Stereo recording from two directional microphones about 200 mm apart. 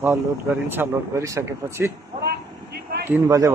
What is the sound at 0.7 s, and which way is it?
Speech, 15° right (ahead or behind).